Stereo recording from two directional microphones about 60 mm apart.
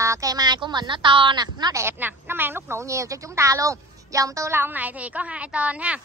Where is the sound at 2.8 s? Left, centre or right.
Right.